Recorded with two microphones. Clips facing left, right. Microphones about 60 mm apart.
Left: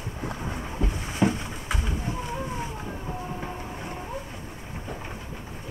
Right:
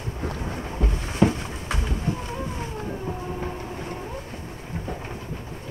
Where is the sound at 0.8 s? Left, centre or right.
Right.